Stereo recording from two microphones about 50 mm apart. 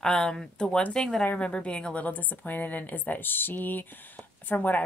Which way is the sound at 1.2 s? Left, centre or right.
Left.